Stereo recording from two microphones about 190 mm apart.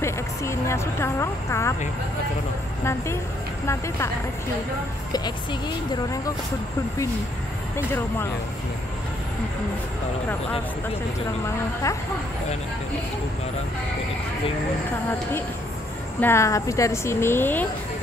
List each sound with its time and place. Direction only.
0.0 s a woman's voice: 15° left (ahead or behind)
2.8 s a woman's voice: 15° left (ahead or behind)
5.1 s speech: 20° left (ahead or behind)
7.7 s a woman's voice: 10° left (ahead or behind)
11.4 s a woman's voice: 15° left (ahead or behind)
16.2 s a woman's voice: 15° left (ahead or behind)